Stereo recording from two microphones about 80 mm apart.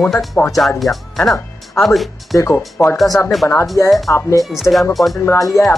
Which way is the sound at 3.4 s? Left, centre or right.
Left.